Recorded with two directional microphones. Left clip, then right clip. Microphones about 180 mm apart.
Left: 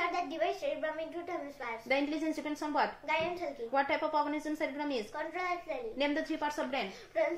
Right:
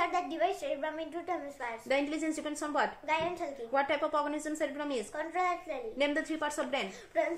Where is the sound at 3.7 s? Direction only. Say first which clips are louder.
Right 1 dB; 10° right (ahead or behind).